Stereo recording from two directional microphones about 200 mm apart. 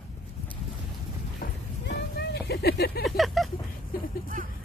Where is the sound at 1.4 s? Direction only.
55° left (ahead or behind).